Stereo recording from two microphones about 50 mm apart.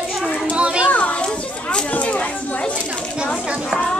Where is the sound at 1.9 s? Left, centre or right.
Left.